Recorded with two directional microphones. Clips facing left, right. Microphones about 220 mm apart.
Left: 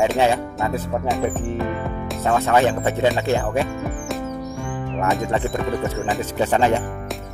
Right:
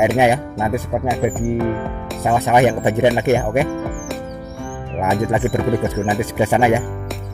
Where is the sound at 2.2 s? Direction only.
15° right (ahead or behind).